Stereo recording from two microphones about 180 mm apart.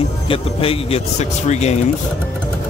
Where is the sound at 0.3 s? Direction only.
30° left (ahead or behind).